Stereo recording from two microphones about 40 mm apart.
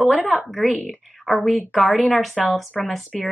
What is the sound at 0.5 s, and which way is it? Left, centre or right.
Speech, centre.